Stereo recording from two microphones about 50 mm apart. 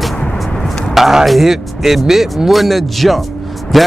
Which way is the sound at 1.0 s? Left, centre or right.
Centre.